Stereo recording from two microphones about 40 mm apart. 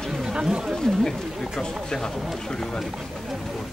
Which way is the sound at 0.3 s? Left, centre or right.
Centre.